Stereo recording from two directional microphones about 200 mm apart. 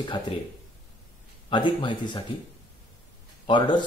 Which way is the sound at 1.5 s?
25° left (ahead or behind).